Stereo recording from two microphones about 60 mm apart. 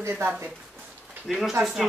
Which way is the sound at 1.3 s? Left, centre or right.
Centre.